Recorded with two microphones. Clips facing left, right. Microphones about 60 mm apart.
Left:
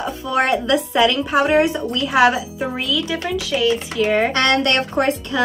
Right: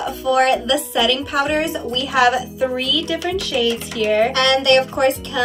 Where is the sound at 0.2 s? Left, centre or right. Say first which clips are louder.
Right 3 dB; left.